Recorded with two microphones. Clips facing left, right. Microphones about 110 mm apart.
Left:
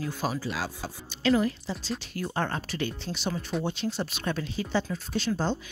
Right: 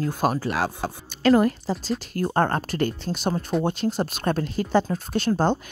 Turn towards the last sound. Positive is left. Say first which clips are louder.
# right 6 dB
turn(degrees=-50)  # may be behind; listen again after turning